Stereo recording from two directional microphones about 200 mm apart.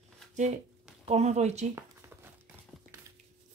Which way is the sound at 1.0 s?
30° right (ahead or behind).